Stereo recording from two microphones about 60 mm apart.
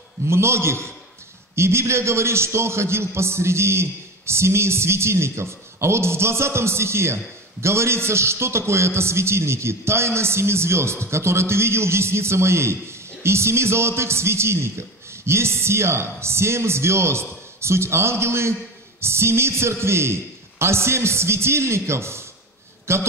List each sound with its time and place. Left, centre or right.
0.3 s a man's voice: right